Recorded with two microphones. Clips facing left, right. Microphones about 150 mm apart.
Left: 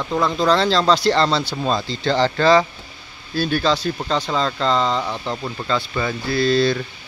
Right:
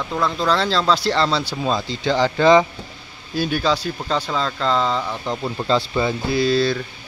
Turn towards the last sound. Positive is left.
turn(degrees=-5)  # may be behind; listen again after turning